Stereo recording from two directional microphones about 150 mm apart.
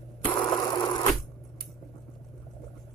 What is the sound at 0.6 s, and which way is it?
Sewing machine, 25° left (ahead or behind).